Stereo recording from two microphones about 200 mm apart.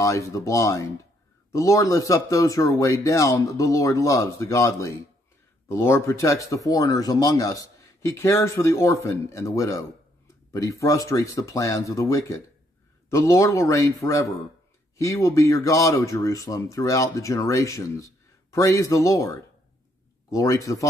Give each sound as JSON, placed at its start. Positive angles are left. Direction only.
{"t": 0.0, "sound": "speech", "side_deg": 15}